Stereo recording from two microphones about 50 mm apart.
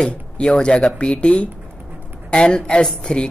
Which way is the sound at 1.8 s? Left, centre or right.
Right.